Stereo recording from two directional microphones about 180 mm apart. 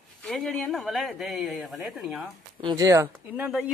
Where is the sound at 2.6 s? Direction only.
25° right (ahead or behind).